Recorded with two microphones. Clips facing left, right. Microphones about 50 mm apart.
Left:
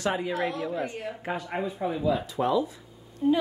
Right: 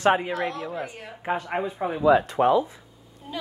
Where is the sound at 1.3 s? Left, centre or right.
Right.